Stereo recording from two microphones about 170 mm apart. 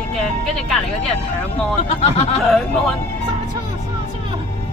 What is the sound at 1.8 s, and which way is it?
Speech, 40° left (ahead or behind).